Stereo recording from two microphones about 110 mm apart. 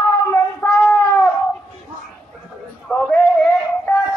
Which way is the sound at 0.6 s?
25° left (ahead or behind).